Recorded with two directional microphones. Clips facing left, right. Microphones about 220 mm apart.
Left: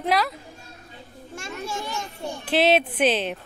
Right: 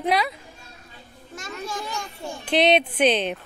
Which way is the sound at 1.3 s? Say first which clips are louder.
Even; 25° left (ahead or behind).